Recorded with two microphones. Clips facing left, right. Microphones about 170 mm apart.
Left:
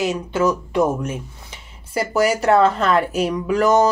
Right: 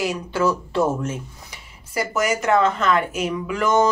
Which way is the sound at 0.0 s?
20° left (ahead or behind).